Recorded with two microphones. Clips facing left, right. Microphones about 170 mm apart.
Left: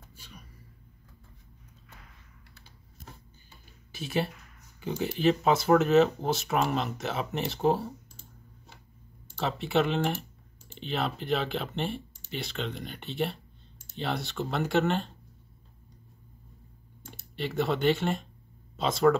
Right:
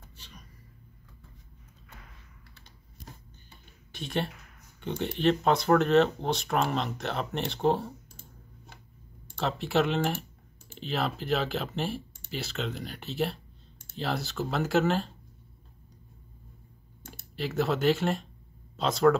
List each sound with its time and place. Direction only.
0.1 s a sound: 10° left (ahead or behind)
3.9 s speech: 5° left (ahead or behind)
9.4 s speech: centre (ahead or behind)
17.1 s speech: centre (ahead or behind)